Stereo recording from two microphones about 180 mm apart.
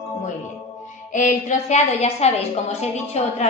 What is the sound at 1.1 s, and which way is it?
A woman's voice, 45° left (ahead or behind).